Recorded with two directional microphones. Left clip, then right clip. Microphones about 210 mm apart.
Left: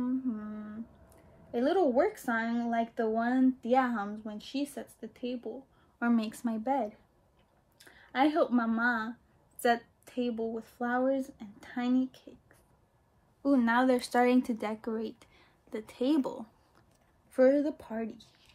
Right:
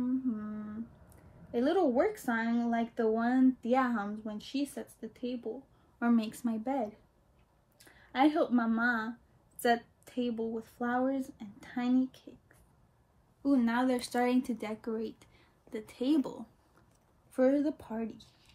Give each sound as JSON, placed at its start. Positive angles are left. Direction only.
{"t": 0.0, "sound": "humming", "side_deg": 10}
{"t": 1.5, "sound": "a woman's voice", "side_deg": 5}
{"t": 13.4, "sound": "speech", "side_deg": 20}
{"t": 17.5, "sound": "speech", "side_deg": 45}
{"t": 18.0, "sound": "a woman's voice", "side_deg": -5}